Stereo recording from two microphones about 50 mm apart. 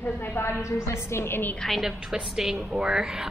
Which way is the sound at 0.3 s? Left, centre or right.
Left.